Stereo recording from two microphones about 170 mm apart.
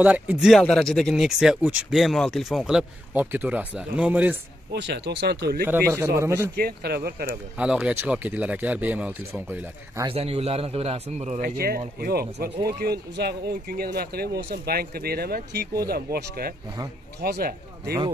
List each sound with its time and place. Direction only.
0.0 s speech: 10° right (ahead or behind)
4.7 s speech: 90° right; by 5.7 s 70° right (ahead or behind)
5.7 s speech: 15° right (ahead or behind)
6.5 s a man's voice: 65° right (ahead or behind)
7.2 s speech: 5° right (ahead or behind)
10.0 s a man's voice: 35° right (ahead or behind)
11.4 s speech: 65° right (ahead or behind)